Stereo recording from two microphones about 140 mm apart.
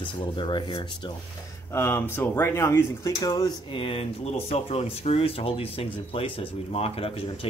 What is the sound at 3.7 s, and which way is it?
Speech, 40° left (ahead or behind).